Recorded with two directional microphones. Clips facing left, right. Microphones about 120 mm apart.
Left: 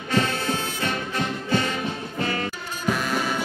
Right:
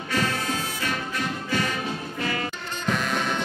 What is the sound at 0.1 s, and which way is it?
Music, 25° left (ahead or behind).